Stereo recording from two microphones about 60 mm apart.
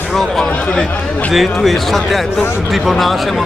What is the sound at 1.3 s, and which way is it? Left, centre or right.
Speech, centre.